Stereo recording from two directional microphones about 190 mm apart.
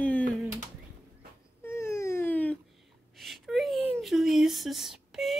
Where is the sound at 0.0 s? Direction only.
5° left (ahead or behind).